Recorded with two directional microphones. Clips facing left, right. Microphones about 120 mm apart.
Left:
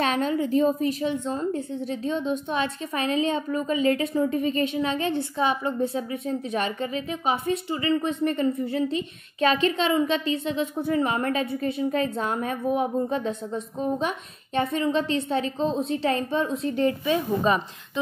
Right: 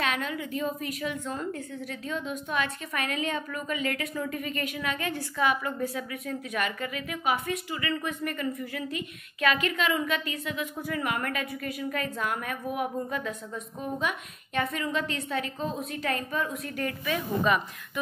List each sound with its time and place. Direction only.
0.0 s a woman's voice: 30° left (ahead or behind)